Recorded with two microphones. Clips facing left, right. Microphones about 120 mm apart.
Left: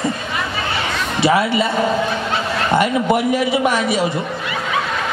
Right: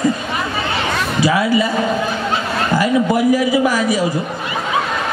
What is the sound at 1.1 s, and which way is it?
Speech, 25° left (ahead or behind).